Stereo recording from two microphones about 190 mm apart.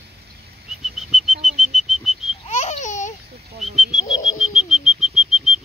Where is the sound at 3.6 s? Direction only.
Centre (ahead or behind).